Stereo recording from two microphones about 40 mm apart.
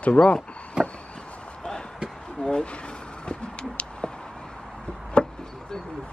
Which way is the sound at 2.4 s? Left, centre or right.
Centre.